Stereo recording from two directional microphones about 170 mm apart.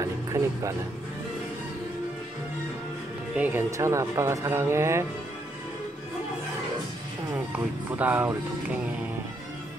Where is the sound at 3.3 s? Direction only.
10° right (ahead or behind).